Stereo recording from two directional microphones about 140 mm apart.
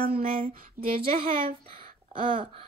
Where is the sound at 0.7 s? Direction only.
40° right (ahead or behind).